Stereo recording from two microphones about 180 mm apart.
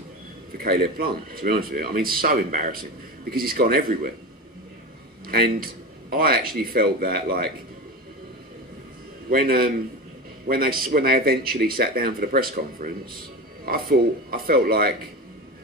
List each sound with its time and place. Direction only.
0.5 s speech: 55° right (ahead or behind)
5.2 s a man's voice: 55° right (ahead or behind)
9.3 s speech: 55° right (ahead or behind)